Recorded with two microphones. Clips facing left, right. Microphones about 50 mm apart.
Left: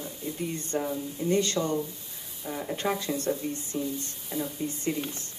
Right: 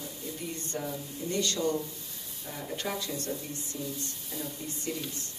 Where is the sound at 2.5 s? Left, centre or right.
Centre.